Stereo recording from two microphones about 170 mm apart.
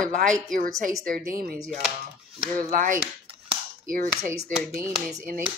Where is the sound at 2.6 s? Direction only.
50° right (ahead or behind).